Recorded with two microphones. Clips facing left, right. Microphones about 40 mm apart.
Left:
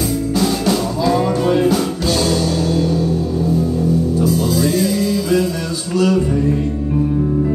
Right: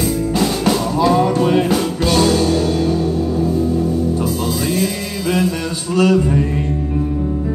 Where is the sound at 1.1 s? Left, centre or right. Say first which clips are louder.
Left 1 dB; right.